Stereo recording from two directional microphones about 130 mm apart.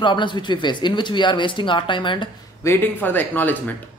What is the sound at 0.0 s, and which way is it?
Speech, 35° left (ahead or behind).